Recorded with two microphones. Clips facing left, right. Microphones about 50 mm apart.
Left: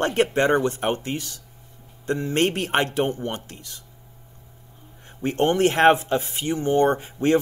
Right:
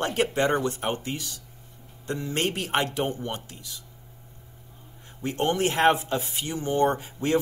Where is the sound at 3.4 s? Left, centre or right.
Left.